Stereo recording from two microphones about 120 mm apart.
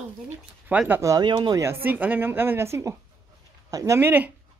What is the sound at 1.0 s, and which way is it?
Speech, 30° right (ahead or behind).